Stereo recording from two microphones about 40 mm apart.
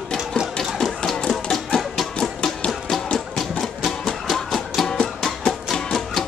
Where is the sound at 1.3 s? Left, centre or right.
Centre.